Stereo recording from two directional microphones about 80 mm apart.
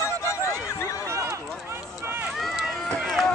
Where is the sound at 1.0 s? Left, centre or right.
Right.